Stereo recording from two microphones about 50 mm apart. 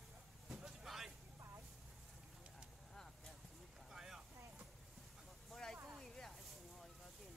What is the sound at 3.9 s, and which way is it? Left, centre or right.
Vehicle, centre.